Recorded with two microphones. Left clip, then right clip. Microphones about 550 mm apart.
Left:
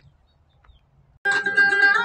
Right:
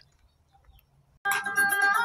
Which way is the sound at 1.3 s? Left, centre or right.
Right.